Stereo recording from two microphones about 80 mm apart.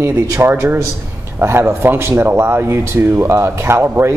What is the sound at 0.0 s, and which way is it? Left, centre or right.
Speech, right.